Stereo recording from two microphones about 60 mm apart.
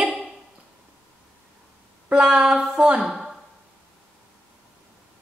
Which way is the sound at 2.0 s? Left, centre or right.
Centre.